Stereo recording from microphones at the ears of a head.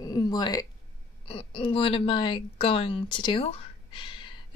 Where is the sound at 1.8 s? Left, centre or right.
Left.